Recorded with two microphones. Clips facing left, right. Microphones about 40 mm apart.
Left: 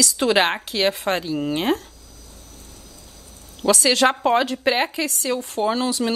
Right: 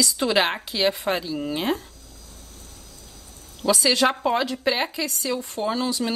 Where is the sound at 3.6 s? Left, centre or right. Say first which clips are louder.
Left 3 dB; left.